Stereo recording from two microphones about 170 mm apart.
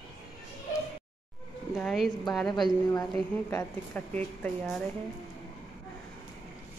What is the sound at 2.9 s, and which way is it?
A woman's voice, 10° left (ahead or behind).